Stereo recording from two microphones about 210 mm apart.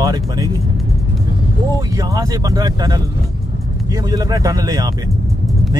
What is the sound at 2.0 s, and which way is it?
Speech, 15° right (ahead or behind).